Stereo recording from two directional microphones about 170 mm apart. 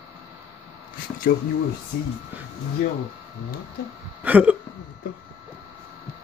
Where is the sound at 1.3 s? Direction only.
60° left (ahead or behind).